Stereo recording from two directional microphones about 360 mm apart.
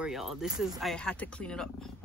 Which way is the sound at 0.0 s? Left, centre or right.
Centre.